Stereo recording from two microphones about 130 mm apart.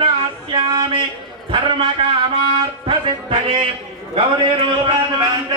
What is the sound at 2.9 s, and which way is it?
Music, 45° right (ahead or behind).